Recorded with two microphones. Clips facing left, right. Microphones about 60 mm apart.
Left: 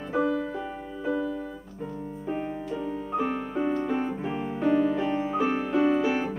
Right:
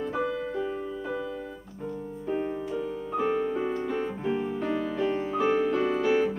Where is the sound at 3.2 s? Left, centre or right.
Centre.